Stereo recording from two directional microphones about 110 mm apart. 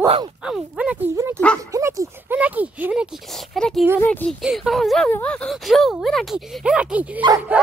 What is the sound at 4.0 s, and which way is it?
Speech, 15° left (ahead or behind).